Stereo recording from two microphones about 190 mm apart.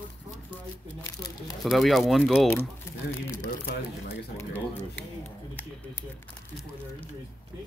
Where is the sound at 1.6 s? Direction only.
Centre (ahead or behind).